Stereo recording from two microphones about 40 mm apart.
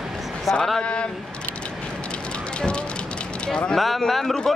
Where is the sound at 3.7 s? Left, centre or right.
Centre.